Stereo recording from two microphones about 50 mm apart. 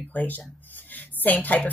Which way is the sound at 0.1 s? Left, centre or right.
Left.